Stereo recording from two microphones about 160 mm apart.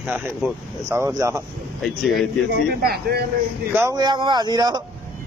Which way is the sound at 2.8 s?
75° right (ahead or behind).